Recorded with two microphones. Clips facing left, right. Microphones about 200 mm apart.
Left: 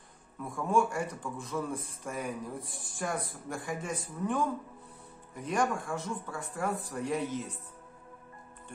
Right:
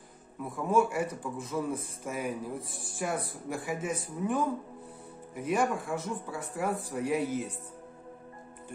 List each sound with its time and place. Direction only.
0.4 s a man's voice: 5° right (ahead or behind)